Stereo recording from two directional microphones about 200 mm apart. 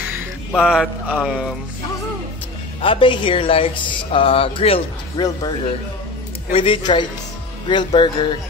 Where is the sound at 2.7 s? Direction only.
25° left (ahead or behind).